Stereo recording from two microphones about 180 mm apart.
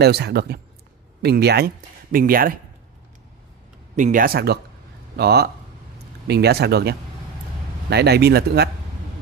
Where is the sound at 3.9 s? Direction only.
45° right (ahead or behind).